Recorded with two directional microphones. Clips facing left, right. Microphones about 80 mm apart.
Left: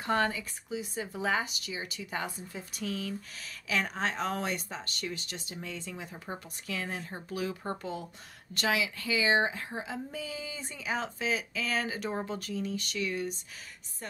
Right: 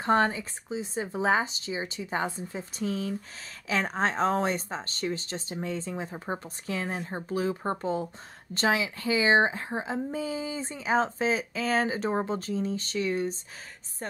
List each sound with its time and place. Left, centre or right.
0.0 s a woman's voice: right